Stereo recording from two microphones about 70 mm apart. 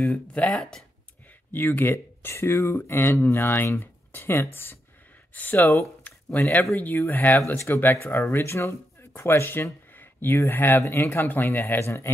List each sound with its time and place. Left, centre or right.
0.0 s speech: centre
1.5 s speech: left
5.3 s speech: left
6.0 s a sound: left
6.5 s speech: left
7.3 s speech: left